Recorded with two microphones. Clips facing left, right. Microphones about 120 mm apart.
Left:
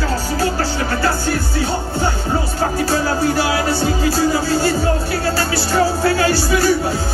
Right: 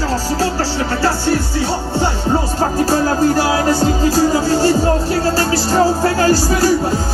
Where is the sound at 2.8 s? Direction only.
40° right (ahead or behind).